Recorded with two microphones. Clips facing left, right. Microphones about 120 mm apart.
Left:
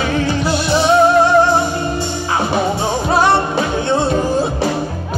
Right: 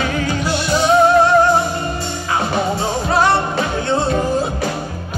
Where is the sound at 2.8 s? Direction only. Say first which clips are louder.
Left 1 dB; 25° left (ahead or behind).